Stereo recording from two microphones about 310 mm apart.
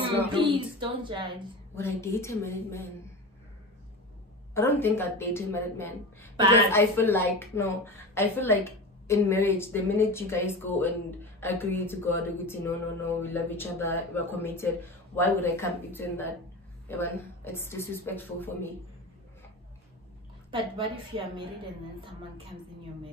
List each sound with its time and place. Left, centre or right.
0.3 s speech: centre
1.8 s a woman's voice: centre
4.6 s a woman's voice: centre
20.5 s speech: centre